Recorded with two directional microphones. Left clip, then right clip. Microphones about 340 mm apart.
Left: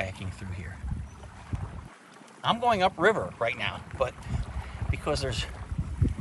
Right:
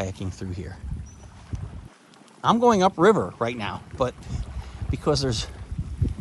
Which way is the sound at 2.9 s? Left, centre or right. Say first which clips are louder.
Right 6 dB; left.